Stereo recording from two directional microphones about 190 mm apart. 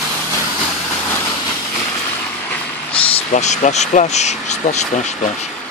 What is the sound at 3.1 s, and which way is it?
Speech, 35° left (ahead or behind).